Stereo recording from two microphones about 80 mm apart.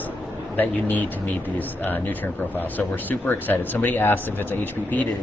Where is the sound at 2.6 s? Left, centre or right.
Left.